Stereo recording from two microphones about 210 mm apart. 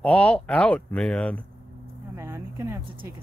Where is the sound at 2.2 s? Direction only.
10° right (ahead or behind).